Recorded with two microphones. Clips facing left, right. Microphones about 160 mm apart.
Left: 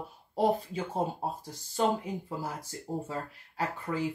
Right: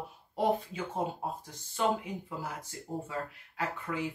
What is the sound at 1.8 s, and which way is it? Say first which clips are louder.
Speech: left 2 dB; 35° left (ahead or behind).